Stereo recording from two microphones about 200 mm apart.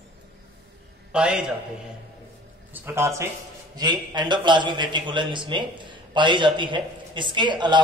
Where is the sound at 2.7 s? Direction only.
10° right (ahead or behind).